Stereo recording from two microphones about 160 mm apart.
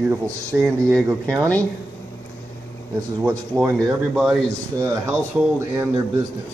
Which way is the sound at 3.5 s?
5° right (ahead or behind).